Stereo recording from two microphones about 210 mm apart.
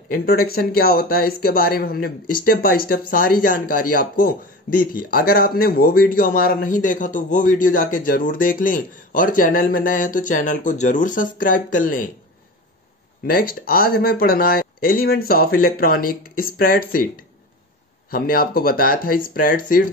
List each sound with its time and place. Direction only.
0.1 s a man's voice: 45° left (ahead or behind)
13.3 s speech: 45° left (ahead or behind)
18.1 s speech: 45° left (ahead or behind)